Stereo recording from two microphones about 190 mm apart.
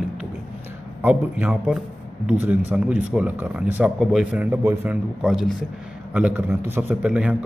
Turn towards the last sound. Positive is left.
turn(degrees=-5)  # may be behind; listen again after turning